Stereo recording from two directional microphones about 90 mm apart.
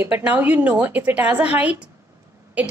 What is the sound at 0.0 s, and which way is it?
A woman's voice, 20° right (ahead or behind).